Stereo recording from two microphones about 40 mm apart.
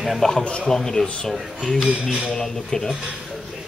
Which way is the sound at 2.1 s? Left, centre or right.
Centre.